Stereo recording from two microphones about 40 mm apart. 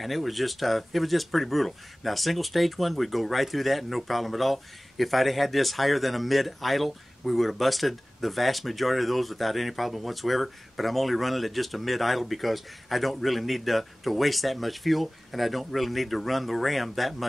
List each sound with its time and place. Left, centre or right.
0.0 s speech: centre